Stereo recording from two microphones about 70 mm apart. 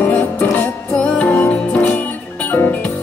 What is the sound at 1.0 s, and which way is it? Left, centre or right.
Music, centre.